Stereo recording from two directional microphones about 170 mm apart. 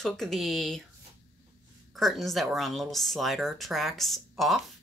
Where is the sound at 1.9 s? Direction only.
Centre (ahead or behind).